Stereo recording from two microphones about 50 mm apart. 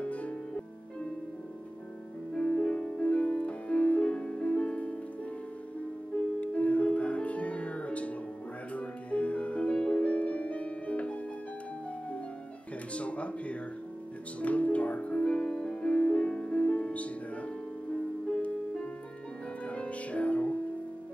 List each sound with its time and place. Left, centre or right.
0.0 s music: left
2.3 s music: centre
6.4 s music: left
12.9 s a sound: left
14.4 s music: left
19.6 s music: left